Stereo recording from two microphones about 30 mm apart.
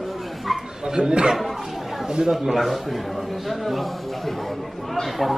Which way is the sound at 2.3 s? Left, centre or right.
Centre.